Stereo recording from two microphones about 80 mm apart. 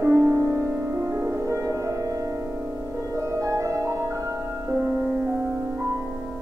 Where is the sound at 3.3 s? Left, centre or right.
Right.